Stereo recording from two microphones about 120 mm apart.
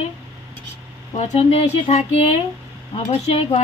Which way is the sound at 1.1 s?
60° left (ahead or behind).